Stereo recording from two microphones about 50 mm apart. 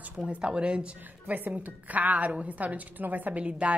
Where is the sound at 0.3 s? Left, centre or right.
Centre.